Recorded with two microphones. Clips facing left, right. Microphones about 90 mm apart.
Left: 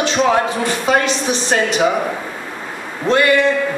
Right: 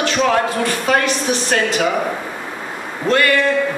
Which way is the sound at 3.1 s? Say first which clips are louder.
Left 2 dB; 20° left (ahead or behind).